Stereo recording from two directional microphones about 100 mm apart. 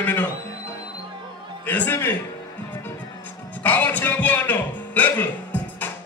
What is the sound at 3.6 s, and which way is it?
Music, 20° left (ahead or behind).